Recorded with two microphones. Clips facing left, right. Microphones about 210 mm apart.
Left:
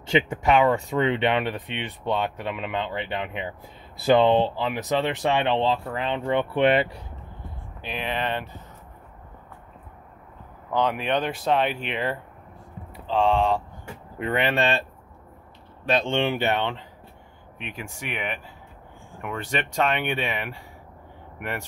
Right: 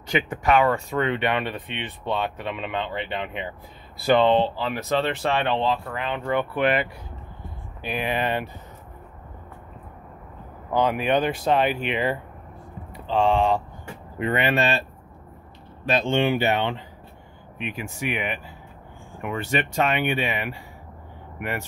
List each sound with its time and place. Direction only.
0.0 s speech: 25° left (ahead or behind)
7.8 s speech: 5° right (ahead or behind)
10.7 s speech: 5° right (ahead or behind)